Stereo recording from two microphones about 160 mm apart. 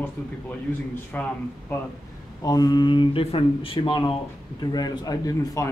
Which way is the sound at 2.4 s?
25° left (ahead or behind).